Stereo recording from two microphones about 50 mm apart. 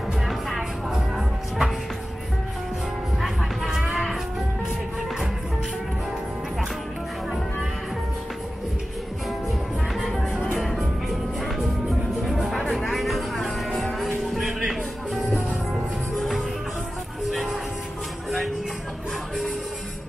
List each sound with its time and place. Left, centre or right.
0.3 s music: centre
3.2 s music: centre
9.5 s music: centre